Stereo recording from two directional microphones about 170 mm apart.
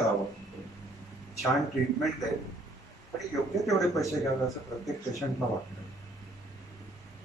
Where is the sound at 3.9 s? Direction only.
20° left (ahead or behind).